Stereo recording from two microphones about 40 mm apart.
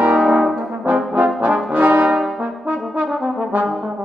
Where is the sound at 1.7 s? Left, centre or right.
Right.